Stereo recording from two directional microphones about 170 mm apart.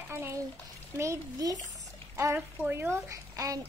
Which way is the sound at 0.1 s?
15° right (ahead or behind).